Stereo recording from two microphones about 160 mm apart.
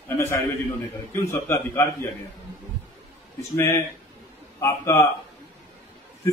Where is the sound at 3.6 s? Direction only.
15° left (ahead or behind).